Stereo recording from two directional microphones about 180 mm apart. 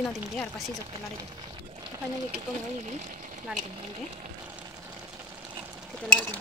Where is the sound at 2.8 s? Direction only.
40° right (ahead or behind).